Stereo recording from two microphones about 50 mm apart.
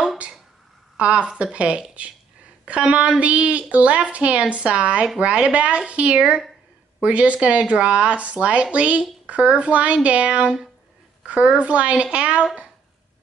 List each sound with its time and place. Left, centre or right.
0.9 s speech: right
7.0 s speech: right